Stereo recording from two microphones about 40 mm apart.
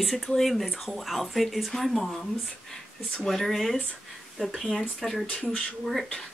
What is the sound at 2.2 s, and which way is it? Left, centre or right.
Speech, centre.